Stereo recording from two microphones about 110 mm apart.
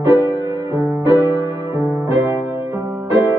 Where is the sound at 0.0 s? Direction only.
20° right (ahead or behind).